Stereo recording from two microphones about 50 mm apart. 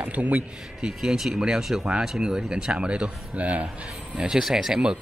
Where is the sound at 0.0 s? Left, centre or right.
Right.